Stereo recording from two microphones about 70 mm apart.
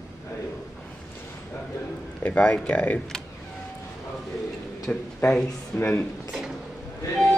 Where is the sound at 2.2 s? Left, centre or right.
Centre.